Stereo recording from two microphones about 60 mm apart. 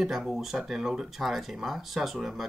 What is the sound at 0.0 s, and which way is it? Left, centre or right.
Speech, centre.